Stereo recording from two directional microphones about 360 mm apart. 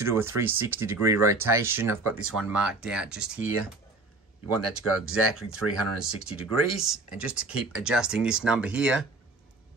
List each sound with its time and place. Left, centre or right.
0.0 s speech: centre
4.6 s speech: right
6.4 s speech: centre